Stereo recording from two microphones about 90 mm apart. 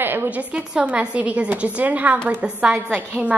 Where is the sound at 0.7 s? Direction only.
15° right (ahead or behind).